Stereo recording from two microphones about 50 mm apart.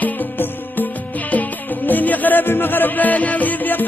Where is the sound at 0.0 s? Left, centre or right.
Left.